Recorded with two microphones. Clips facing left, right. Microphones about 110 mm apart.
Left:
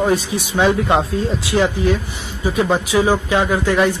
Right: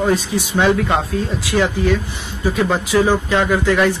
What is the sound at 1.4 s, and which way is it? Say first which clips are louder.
Speech: even; 15° left (ahead or behind).